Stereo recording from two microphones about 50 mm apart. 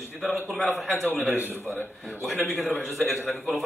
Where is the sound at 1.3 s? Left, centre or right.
Right.